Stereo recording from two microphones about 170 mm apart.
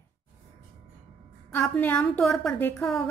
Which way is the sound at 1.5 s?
10° left (ahead or behind).